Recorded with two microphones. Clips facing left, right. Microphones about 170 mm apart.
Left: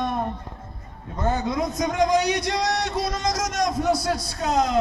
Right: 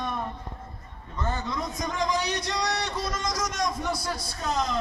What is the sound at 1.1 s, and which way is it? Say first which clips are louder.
A man's voice: left 7 dB; 50° left (ahead or behind).